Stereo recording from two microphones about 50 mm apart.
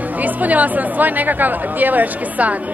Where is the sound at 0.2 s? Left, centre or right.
Right.